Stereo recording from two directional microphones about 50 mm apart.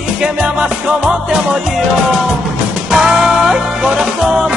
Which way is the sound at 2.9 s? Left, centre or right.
Centre.